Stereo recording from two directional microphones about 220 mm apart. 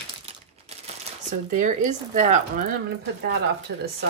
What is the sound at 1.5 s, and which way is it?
Speech, 35° right (ahead or behind).